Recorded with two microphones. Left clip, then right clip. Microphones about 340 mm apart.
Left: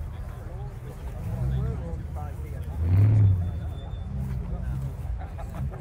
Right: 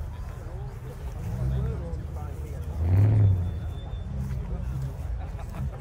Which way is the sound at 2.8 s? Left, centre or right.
Right.